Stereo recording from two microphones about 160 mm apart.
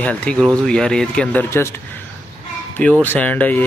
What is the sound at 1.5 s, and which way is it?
Speech, 15° left (ahead or behind).